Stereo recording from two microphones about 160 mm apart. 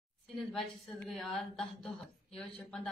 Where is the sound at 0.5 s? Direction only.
Centre (ahead or behind).